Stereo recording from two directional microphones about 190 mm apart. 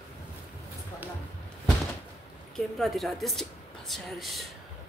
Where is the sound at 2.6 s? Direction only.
Centre (ahead or behind).